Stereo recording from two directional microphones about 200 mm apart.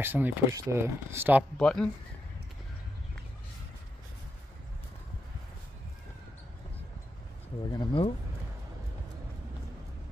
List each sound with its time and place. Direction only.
0.0 s speech: 10° right (ahead or behind)
1.6 s speech: 5° left (ahead or behind)
7.7 s speech: 25° left (ahead or behind)